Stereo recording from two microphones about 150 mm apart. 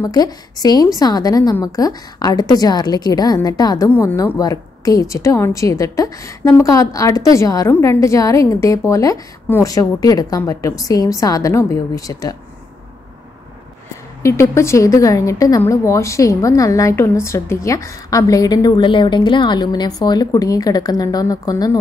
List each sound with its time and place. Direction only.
0.0 s a woman's voice: 25° left (ahead or behind)
14.2 s a woman's voice: 20° left (ahead or behind)